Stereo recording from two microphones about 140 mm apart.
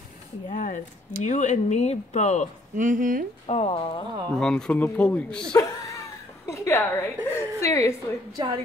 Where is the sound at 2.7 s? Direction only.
65° right (ahead or behind).